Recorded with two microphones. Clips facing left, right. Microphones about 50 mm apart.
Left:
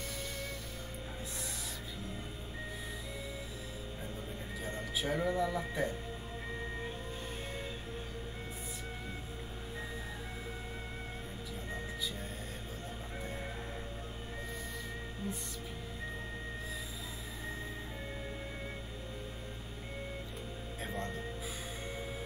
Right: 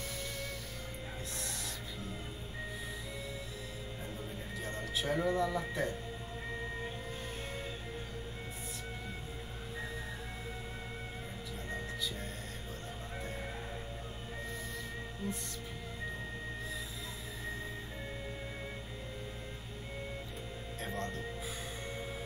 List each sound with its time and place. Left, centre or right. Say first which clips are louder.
4.6 s speech: even; centre
15.2 s music: right 1 dB; centre
20.8 s music: even; centre